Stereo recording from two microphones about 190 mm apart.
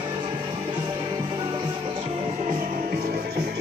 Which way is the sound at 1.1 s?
25° right (ahead or behind).